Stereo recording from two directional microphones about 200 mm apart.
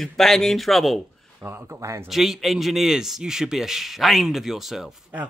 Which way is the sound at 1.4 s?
15° right (ahead or behind).